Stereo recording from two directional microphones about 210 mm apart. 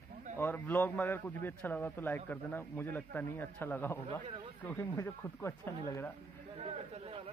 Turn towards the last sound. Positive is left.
turn(degrees=-30)  # may be behind; listen again after turning